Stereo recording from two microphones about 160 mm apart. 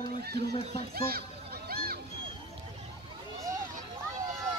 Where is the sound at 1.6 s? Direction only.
70° right (ahead or behind).